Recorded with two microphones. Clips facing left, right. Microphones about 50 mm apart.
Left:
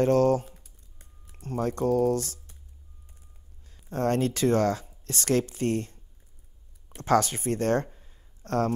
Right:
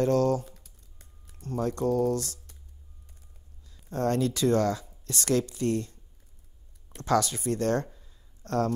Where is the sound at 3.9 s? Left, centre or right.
Left.